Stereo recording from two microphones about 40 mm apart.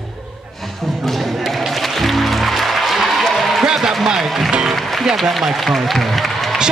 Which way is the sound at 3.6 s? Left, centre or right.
Centre.